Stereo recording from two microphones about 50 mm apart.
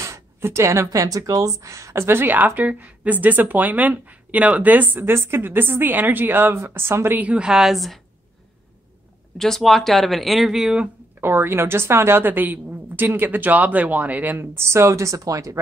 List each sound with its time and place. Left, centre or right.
0.4 s a woman's voice: right
1.6 s speech: right
2.0 s speech: right
2.3 s speech: right
6.6 s speech: right
7.2 s a woman's voice: right
7.4 s speech: centre
9.4 s speech: centre
11.1 s speech: right
14.4 s a woman's voice: right